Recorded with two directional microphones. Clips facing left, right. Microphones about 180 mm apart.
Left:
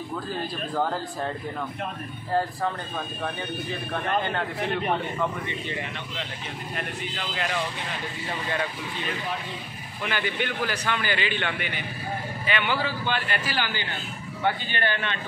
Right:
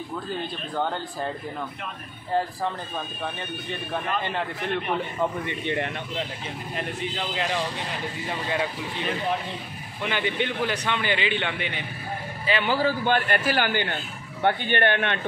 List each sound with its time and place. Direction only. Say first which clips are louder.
0.3 s speech: left 1 dB; centre (ahead or behind)
3.9 s speech: left 1 dB; 5° right (ahead or behind)
6.8 s a man's voice: right 5 dB; 25° right (ahead or behind)
10.0 s a man's voice: right 2 dB; 20° right (ahead or behind); by 15.1 s 60° right (ahead or behind)